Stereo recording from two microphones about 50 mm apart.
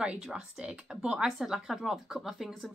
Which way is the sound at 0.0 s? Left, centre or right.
Centre.